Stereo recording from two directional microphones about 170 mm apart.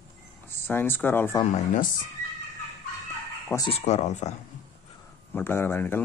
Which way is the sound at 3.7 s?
40° left (ahead or behind).